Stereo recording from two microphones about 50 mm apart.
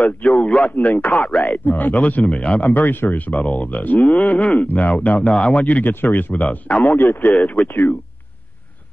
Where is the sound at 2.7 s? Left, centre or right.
Left.